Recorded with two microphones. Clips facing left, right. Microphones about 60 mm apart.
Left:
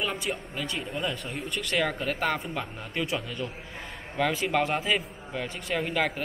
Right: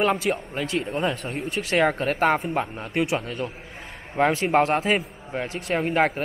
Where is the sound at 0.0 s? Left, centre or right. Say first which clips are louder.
Right 8 dB; right.